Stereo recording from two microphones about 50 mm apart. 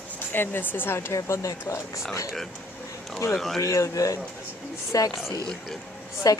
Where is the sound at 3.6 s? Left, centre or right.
Left.